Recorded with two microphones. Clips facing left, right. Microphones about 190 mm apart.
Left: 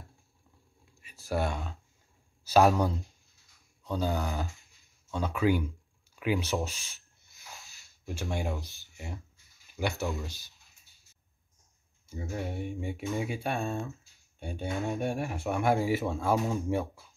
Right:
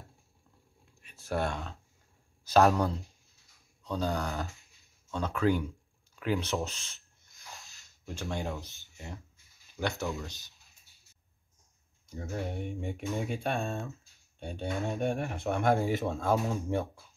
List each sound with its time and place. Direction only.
1.0 s speech: 5° left (ahead or behind)
6.1 s a sound: 5° left (ahead or behind)
8.9 s speech: 15° left (ahead or behind)
12.1 s speech: 5° left (ahead or behind)